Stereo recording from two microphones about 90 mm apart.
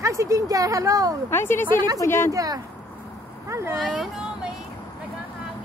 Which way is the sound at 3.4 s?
35° right (ahead or behind).